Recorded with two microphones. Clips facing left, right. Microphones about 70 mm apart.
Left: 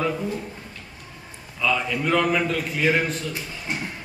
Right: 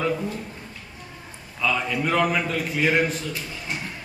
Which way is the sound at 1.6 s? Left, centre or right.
Centre.